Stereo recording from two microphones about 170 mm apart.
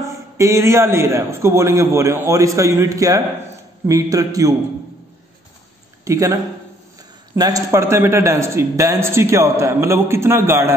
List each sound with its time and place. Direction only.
0.0 s a man's voice: 15° right (ahead or behind)
6.0 s a man's voice: 20° right (ahead or behind)